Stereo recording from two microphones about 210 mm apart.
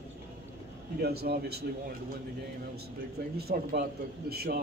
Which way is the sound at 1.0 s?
50° right (ahead or behind).